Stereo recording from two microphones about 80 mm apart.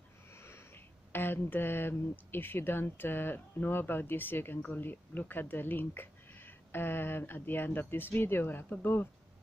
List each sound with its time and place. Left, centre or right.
1.1 s speech: left